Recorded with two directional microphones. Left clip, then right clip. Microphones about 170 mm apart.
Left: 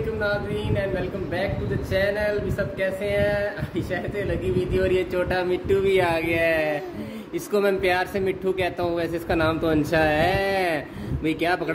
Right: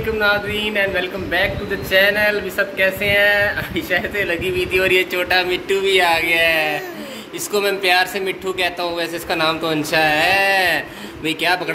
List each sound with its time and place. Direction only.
0.2 s a man's voice: 5° left (ahead or behind)
4.7 s speech: 25° left (ahead or behind)
5.1 s speech: 45° left (ahead or behind)